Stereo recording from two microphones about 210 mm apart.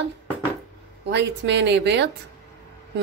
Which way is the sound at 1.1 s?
55° right (ahead or behind).